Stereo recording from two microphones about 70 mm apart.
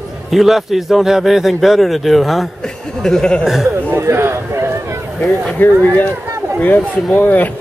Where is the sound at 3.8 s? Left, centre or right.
Right.